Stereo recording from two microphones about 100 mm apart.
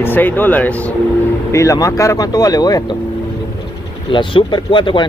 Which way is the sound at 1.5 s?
30° left (ahead or behind).